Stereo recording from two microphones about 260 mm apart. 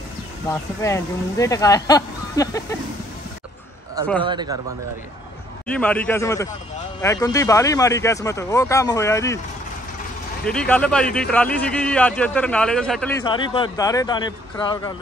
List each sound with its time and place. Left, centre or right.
0.5 s speech: centre
4.3 s a man's voice: centre
5.7 s speech: centre
10.4 s speech: centre
13.2 s speech: centre